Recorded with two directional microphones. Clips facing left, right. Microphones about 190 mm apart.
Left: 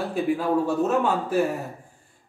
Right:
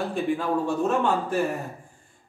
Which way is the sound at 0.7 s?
5° left (ahead or behind).